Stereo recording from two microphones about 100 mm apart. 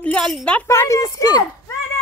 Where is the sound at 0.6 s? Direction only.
30° left (ahead or behind).